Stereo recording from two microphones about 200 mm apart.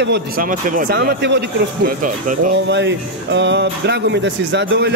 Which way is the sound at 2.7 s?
60° right (ahead or behind).